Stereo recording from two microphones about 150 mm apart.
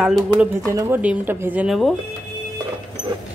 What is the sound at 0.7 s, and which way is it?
Speech, 15° right (ahead or behind).